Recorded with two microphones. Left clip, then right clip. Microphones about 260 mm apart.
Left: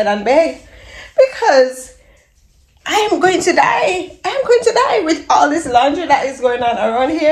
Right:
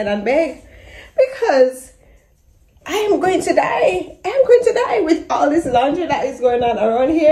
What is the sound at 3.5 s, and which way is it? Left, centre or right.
A woman's voice, centre.